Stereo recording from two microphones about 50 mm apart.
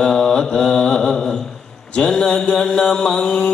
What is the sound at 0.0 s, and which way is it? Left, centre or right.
Mantra, centre.